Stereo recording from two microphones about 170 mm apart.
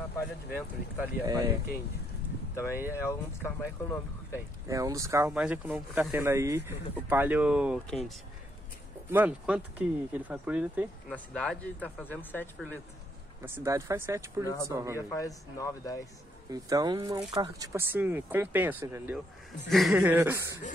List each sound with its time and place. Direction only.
0.5 s speech: 10° right (ahead or behind)
1.2 s speech: 20° right (ahead or behind)
2.5 s speech: 15° left (ahead or behind)
4.3 s speech: 20° right (ahead or behind)
5.3 s speech: 5° right (ahead or behind)
9.1 s speech: 10° right (ahead or behind); by 12.4 s 10° left (ahead or behind)
13.4 s speech: 15° right (ahead or behind)
15.0 s speech: 20° left (ahead or behind)
16.4 s speech: 20° right (ahead or behind)
17.9 s speech: 10° right (ahead or behind)